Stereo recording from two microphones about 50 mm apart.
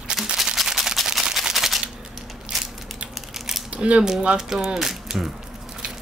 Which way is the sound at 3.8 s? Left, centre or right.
Right.